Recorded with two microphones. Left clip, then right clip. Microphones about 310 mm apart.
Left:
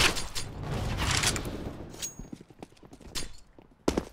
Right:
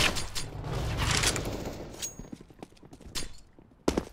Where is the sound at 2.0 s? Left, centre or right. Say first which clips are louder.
Left 1 dB; centre.